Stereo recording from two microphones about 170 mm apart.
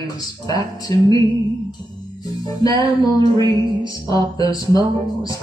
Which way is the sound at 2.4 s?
25° left (ahead or behind).